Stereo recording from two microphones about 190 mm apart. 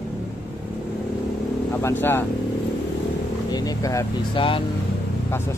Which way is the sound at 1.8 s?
10° left (ahead or behind).